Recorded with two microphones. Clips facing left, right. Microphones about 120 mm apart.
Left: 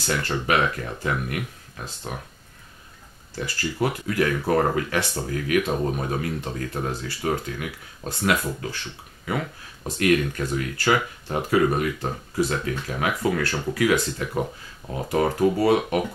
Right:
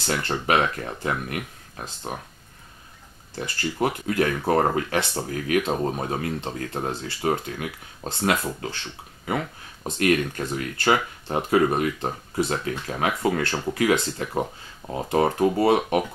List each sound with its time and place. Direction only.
0.2 s speech: 25° right (ahead or behind)
3.3 s speech: 25° right (ahead or behind)
9.8 s speech: 30° right (ahead or behind)